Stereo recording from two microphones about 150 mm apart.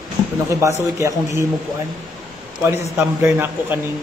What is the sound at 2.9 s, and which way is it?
Speech, 15° right (ahead or behind).